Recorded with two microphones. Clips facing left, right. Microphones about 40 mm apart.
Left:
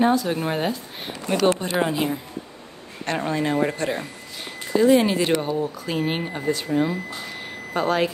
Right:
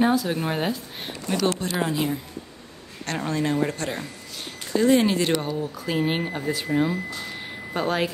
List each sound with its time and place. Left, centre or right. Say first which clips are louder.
0.0 s a woman's voice: left 2 dB; centre
1.3 s speech: left 4 dB; left
1.6 s a woman's voice: left 2 dB; centre
7.4 s reversing beeps: left 3 dB; centre